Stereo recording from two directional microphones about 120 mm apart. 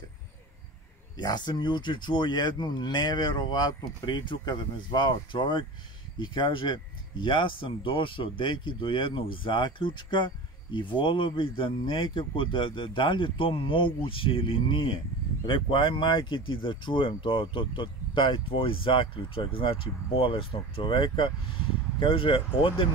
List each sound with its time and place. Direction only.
1.1 s speech: 35° left (ahead or behind)